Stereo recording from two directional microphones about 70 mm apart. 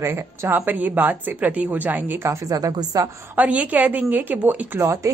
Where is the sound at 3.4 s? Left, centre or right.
Right.